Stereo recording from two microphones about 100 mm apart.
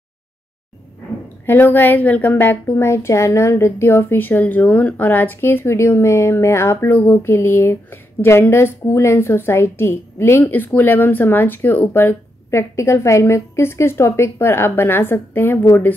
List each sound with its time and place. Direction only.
1.4 s a woman's voice: 20° left (ahead or behind)